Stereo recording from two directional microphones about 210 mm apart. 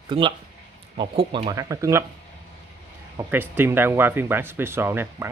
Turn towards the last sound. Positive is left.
turn(degrees=-10)  # may be behind; listen again after turning